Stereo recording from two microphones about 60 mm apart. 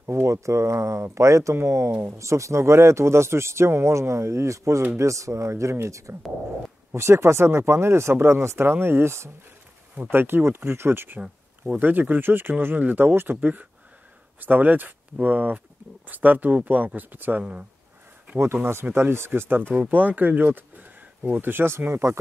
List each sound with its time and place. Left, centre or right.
0.0 s speech: right
11.7 s speech: right
18.9 s speech: right